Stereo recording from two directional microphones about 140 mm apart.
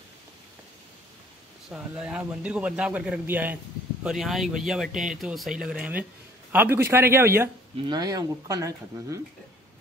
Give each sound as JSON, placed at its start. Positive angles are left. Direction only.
{"t": 1.7, "sound": "a man's voice", "side_deg": -5}
{"t": 4.0, "sound": "a man's voice", "side_deg": 0}
{"t": 7.9, "sound": "speech", "side_deg": -30}